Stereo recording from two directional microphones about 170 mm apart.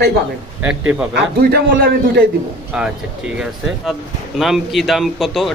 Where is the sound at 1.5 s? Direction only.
70° right (ahead or behind).